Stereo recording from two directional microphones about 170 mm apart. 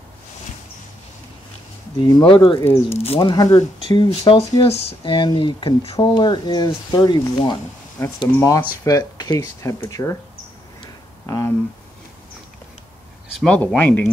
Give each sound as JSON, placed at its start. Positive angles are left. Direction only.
{"t": 2.0, "sound": "speech", "side_deg": 25}
{"t": 2.6, "sound": "speech", "side_deg": 15}
{"t": 8.0, "sound": "speech", "side_deg": 15}
{"t": 11.2, "sound": "speech", "side_deg": 15}
{"t": 13.3, "sound": "speech", "side_deg": 5}